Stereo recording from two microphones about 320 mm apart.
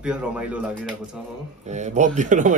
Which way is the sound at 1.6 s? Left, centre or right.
Right.